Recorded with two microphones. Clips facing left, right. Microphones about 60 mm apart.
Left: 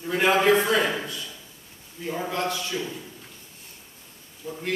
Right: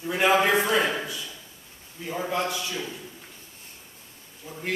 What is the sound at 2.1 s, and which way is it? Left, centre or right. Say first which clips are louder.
Speech: even; centre.